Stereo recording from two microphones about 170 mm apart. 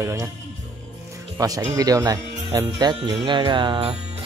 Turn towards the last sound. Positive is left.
turn(degrees=-30)  # may be behind; listen again after turning